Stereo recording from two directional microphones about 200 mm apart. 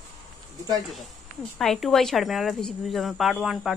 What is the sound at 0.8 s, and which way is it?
Speech, centre (ahead or behind).